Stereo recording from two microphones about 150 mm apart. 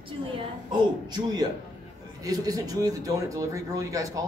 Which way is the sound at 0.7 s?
25° right (ahead or behind).